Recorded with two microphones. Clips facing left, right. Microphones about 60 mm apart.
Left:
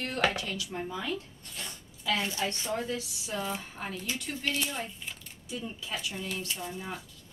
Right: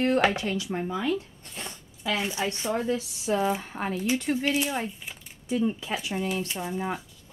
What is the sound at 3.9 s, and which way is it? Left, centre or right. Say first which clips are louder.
Speech: right 11 dB; centre.